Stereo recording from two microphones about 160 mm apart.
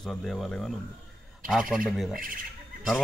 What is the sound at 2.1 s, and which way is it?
Speech, 60° right (ahead or behind).